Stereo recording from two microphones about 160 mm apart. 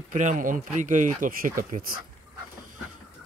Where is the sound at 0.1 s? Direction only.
50° right (ahead or behind).